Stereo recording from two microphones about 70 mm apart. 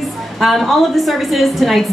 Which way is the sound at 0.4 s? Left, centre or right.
Centre.